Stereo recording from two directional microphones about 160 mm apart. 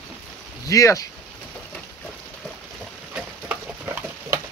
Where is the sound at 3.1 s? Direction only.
10° right (ahead or behind).